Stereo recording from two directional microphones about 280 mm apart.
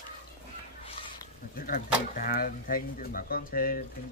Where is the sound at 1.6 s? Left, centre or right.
Left.